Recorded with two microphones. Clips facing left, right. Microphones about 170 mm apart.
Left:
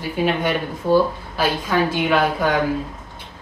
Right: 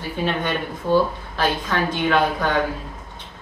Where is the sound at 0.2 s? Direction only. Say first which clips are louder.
Left 3 dB; 10° left (ahead or behind).